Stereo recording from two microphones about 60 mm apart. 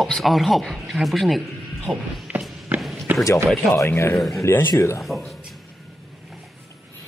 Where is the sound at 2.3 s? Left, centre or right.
Right.